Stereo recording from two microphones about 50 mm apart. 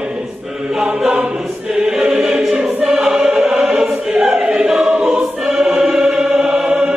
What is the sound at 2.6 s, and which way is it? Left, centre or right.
Choir, right.